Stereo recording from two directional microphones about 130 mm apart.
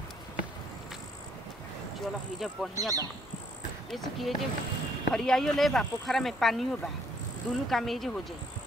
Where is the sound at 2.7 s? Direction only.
25° right (ahead or behind).